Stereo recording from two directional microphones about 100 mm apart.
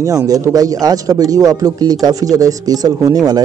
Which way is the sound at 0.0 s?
35° right (ahead or behind).